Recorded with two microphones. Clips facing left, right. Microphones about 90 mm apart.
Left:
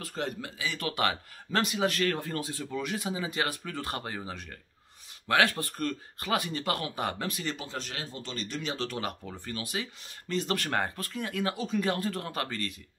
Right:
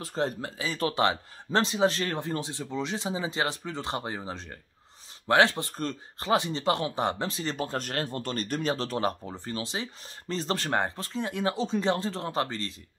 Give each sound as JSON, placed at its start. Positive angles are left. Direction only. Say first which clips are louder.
{"t": 0.0, "sound": "speech", "louder": "right 5 dB", "side_deg": -30}
{"t": 7.5, "sound": "speech", "louder": "right 7 dB", "side_deg": -50}